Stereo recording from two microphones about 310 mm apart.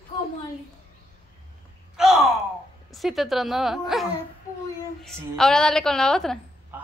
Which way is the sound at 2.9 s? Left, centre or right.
Centre.